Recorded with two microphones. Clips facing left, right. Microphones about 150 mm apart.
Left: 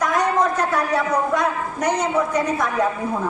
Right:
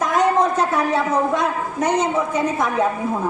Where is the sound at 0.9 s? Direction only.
25° right (ahead or behind).